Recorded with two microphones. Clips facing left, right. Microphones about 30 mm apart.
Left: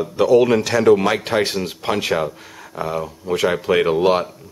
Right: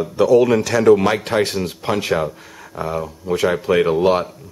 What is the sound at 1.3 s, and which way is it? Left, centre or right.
Speech, right.